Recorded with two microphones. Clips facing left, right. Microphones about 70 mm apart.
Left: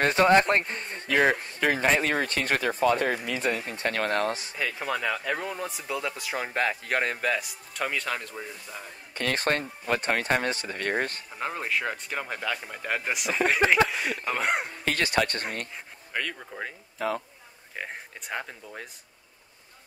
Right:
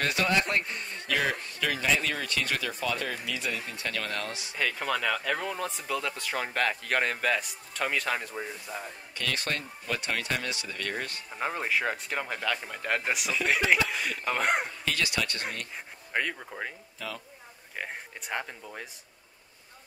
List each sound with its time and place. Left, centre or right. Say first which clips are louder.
0.0 s a man's voice: left 7 dB; left
4.6 s speech: even; centre
8.2 s speech: right 2 dB; centre
9.1 s a man's voice: left 6 dB; left
11.3 s speech: right 1 dB; centre
13.6 s a man's voice: left 3 dB; left
14.2 s speech: right 2 dB; centre
14.9 s a man's voice: left 7 dB; left
16.1 s speech: right 2 dB; centre
16.3 s speech: left 1 dB; centre
17.0 s a man's voice: left 10 dB; left
17.7 s speech: even; centre